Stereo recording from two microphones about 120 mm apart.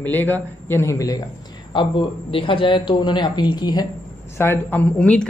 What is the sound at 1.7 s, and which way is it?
A man's voice, 45° left (ahead or behind).